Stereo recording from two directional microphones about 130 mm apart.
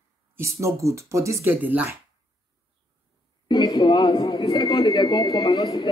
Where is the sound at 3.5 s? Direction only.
30° left (ahead or behind).